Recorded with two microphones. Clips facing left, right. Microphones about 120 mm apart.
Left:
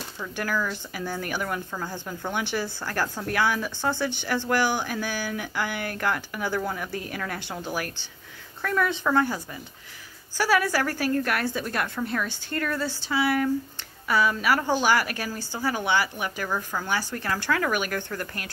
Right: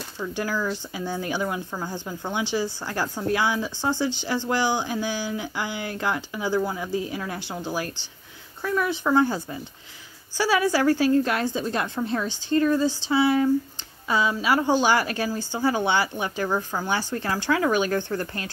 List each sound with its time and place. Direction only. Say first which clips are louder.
0.2 s speech: right 2 dB; 20° right (ahead or behind)
9.2 s speech: right 4 dB; 30° right (ahead or behind)
10.3 s speech: right 1 dB; 15° right (ahead or behind)